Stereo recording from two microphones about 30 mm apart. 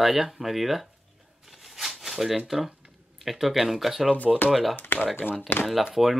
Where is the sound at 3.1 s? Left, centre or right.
Centre.